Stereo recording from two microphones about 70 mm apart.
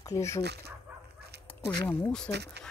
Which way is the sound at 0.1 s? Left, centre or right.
Left.